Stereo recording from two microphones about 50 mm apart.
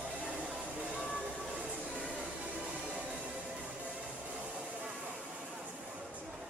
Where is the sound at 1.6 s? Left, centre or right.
Right.